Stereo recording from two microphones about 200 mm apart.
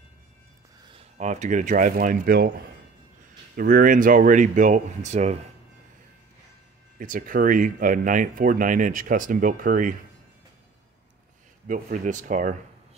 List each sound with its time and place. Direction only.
0.9 s speech: 35° right (ahead or behind)
3.5 s speech: 45° right (ahead or behind)
7.0 s speech: 40° right (ahead or behind)
11.6 s speech: 40° right (ahead or behind)